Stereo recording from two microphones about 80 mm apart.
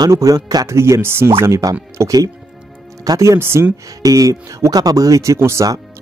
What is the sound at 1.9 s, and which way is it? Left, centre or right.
Speech, right.